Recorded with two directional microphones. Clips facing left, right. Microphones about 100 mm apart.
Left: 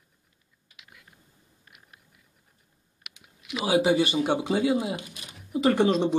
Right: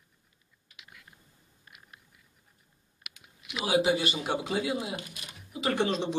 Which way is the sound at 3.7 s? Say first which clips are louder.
Left 4 dB; 30° left (ahead or behind).